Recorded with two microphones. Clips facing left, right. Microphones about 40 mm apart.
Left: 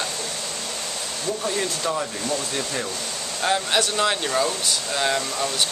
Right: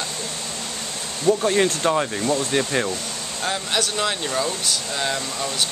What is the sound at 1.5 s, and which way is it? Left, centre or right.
Speech, right.